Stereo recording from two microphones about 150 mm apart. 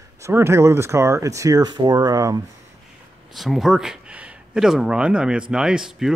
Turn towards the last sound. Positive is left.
turn(degrees=-5)  # may be behind; listen again after turning